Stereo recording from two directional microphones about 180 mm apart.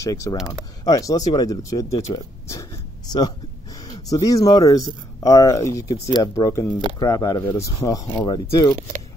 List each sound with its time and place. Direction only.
0.0 s speech: 20° left (ahead or behind)